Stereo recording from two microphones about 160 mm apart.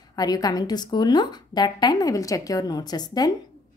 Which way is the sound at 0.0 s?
25° left (ahead or behind).